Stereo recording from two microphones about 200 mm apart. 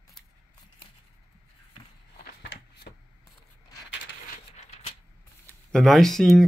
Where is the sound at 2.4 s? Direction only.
55° left (ahead or behind).